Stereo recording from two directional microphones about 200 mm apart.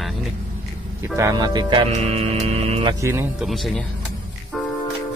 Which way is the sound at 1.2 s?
20° right (ahead or behind).